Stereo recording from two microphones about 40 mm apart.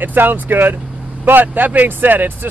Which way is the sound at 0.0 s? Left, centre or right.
Right.